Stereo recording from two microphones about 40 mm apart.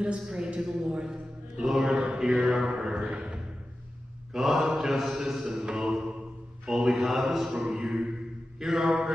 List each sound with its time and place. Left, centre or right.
0.0 s a man's voice: right
1.0 s mantra: centre
1.9 s mantra: right
2.1 s speech: centre
4.3 s a man's voice: centre
7.5 s speech: centre